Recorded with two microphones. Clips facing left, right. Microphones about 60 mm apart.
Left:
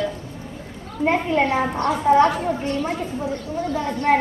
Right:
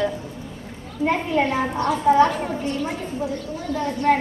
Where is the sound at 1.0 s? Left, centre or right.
Left.